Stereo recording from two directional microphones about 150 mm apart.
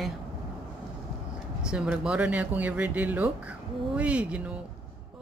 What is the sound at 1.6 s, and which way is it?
Speech, 5° right (ahead or behind).